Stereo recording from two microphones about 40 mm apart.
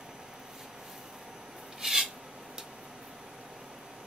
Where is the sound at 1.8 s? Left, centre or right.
Centre.